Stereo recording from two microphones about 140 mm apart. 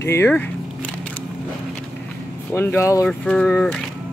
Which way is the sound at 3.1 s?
5° left (ahead or behind).